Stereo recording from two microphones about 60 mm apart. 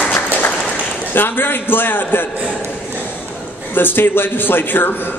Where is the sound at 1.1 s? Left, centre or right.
Left.